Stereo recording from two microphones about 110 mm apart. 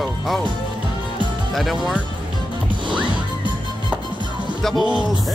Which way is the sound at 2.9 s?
45° right (ahead or behind).